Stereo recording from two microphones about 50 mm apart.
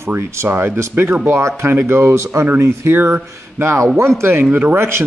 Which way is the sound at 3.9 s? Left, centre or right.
Right.